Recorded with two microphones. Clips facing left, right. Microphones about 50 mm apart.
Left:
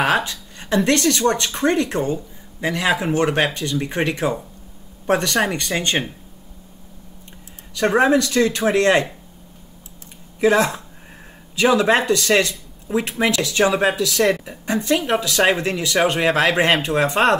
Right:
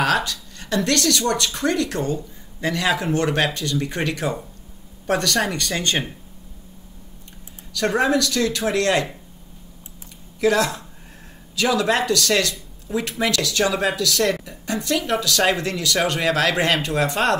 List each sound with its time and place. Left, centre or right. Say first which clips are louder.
0.0 s speech: left 2 dB; left
7.7 s speech: left 4 dB; left
10.4 s speech: left 3 dB; left